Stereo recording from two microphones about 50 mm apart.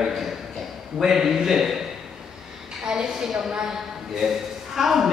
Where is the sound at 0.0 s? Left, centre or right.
Centre.